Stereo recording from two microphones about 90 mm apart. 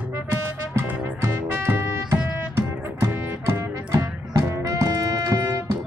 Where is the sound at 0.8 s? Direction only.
20° right (ahead or behind).